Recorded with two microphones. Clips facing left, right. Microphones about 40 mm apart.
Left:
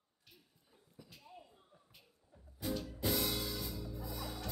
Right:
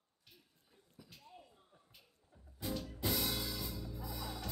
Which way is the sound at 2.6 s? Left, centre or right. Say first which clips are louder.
Left 2 dB; centre.